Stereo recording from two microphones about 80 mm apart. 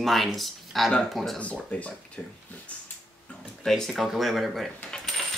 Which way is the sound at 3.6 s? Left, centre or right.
Centre.